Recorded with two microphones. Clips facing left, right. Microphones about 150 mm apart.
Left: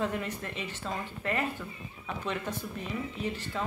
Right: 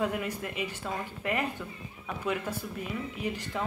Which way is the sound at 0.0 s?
10° right (ahead or behind).